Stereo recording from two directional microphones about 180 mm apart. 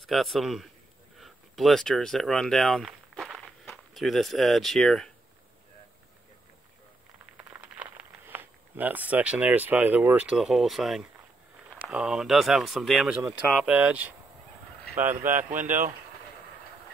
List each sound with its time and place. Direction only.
0.0 s speech: centre (ahead or behind)
7.3 s speech: 10° right (ahead or behind)
15.5 s speech: 45° right (ahead or behind)